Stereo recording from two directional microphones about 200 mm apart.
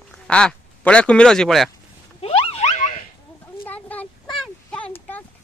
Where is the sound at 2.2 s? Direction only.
30° left (ahead or behind).